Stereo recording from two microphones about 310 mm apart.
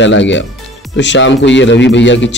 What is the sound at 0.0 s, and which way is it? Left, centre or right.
Speech, left.